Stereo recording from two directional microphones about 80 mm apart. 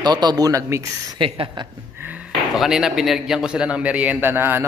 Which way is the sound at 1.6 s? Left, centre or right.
Right.